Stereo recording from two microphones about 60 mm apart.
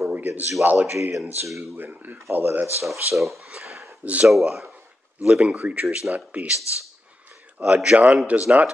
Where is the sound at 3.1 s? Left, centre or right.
Centre.